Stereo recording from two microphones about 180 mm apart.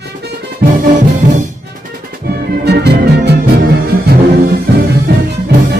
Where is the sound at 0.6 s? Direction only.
60° right (ahead or behind).